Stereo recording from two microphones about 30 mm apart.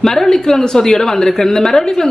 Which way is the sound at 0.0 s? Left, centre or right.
Centre.